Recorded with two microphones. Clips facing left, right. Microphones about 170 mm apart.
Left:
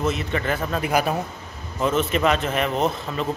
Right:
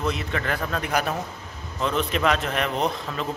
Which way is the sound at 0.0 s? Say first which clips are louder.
Left 3 dB; centre (ahead or behind).